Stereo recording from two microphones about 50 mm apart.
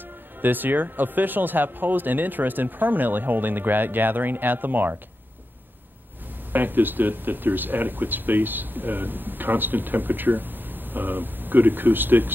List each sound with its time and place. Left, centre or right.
0.4 s speech: right
6.5 s speech: right